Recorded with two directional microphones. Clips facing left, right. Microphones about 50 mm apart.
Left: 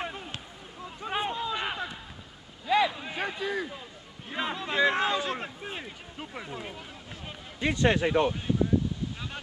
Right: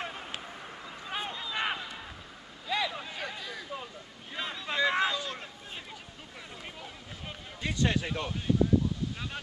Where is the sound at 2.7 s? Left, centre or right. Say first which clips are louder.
Left 7 dB; centre.